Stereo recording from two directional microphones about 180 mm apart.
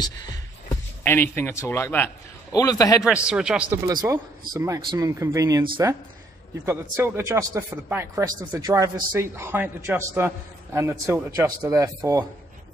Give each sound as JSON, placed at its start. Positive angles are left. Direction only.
{"t": 0.0, "sound": "a man's voice", "side_deg": 20}
{"t": 3.0, "sound": "speech", "side_deg": -5}
{"t": 3.8, "sound": "a man's voice", "side_deg": -20}